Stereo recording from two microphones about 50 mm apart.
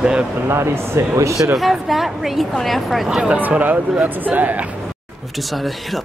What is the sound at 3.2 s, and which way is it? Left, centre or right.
Speech, right.